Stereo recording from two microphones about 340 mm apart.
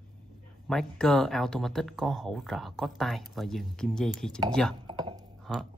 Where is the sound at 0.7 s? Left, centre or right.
Centre.